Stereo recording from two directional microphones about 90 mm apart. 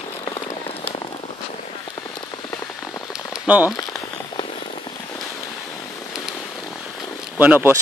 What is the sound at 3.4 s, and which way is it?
Speech, 20° right (ahead or behind).